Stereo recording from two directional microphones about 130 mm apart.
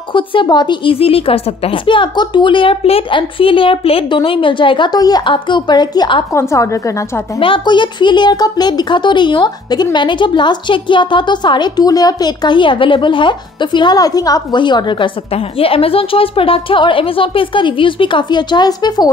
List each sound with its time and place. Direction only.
0.1 s a woman's voice: 40° left (ahead or behind)
6.3 s a woman's voice: 25° left (ahead or behind)
7.3 s a woman's voice: 40° left (ahead or behind)